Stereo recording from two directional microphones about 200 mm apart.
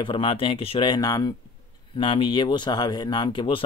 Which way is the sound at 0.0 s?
25° left (ahead or behind).